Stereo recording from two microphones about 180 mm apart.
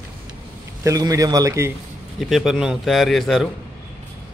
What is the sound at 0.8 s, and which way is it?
Speech, 20° right (ahead or behind).